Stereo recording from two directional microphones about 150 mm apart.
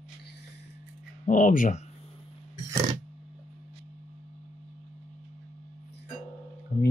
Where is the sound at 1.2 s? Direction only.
60° left (ahead or behind).